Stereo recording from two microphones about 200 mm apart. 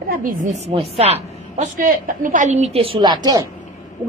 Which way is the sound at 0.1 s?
40° right (ahead or behind).